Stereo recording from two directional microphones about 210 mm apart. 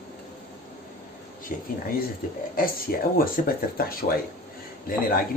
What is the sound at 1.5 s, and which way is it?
Speech, 40° left (ahead or behind).